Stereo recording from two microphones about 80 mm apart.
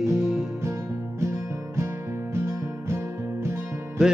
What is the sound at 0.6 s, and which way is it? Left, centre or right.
Music, right.